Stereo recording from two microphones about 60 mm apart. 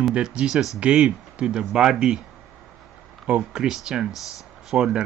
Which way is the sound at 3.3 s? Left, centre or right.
Centre.